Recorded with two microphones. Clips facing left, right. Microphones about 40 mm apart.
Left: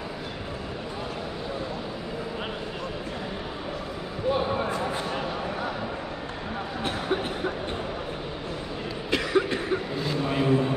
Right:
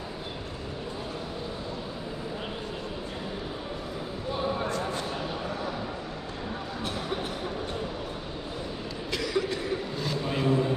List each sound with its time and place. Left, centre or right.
4.3 s basketball bounce: centre
6.8 s a sound: left
9.1 s cough: left
9.9 s vehicle: centre